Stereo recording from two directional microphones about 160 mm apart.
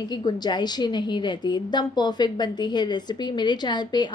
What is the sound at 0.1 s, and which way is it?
A woman's voice, 25° left (ahead or behind).